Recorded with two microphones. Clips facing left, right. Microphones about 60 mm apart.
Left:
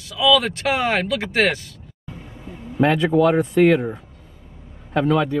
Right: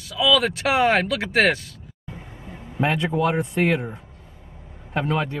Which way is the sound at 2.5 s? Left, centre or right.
Right.